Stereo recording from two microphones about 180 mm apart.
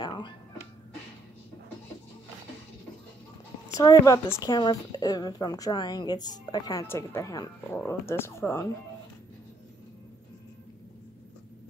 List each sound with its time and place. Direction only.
0.0 s music: 25° left (ahead or behind)
3.8 s a woman's voice: 15° left (ahead or behind)